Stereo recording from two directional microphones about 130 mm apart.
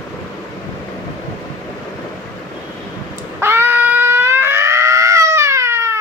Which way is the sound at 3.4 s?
15° right (ahead or behind).